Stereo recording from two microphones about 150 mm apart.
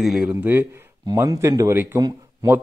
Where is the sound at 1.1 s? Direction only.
20° right (ahead or behind).